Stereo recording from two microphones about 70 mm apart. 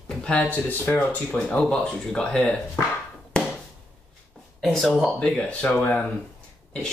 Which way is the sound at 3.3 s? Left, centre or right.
Centre.